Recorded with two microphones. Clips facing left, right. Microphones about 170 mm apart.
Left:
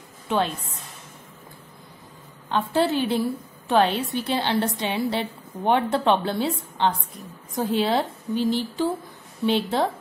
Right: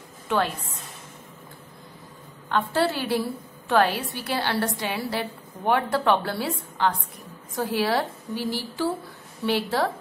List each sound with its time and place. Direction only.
2.5 s a woman's voice: 20° left (ahead or behind)